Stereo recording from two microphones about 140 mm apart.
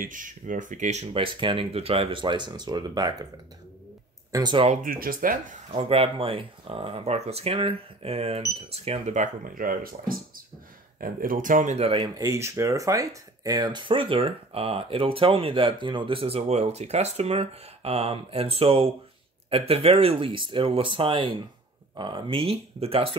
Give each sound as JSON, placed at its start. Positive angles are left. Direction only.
{"t": 0.0, "sound": "speech", "side_deg": -70}
{"t": 1.1, "sound": "speech", "side_deg": -40}
{"t": 4.3, "sound": "speech", "side_deg": -30}
{"t": 4.8, "sound": "speech", "side_deg": -90}
{"t": 5.7, "sound": "speech", "side_deg": -40}
{"t": 12.2, "sound": "speech", "side_deg": -20}